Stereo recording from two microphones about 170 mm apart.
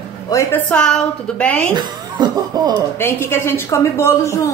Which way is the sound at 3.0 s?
15° left (ahead or behind).